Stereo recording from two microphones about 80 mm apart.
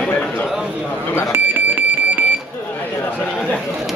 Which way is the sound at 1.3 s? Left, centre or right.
Right.